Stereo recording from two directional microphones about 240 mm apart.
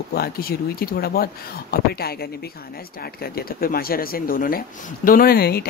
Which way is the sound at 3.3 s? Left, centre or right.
Left.